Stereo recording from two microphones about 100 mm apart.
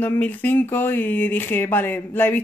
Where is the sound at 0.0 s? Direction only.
15° left (ahead or behind).